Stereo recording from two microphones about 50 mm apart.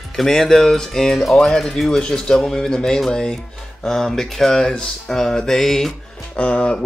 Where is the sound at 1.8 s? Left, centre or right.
Centre.